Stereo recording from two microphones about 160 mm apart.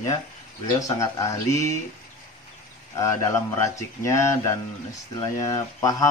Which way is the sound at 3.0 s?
20° left (ahead or behind).